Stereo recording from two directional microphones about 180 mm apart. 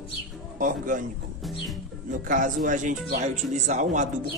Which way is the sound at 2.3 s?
45° right (ahead or behind).